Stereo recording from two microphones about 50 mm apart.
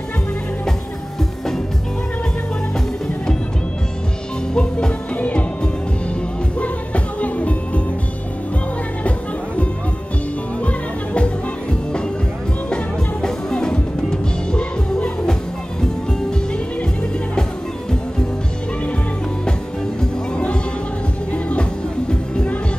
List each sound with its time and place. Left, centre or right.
4.6 s music: centre
5.1 s music: left
6.6 s music: left
12.6 s music: centre
20.0 s music: centre